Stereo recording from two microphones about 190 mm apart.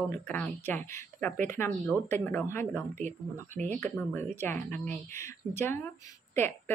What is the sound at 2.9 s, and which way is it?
Speech, 40° right (ahead or behind).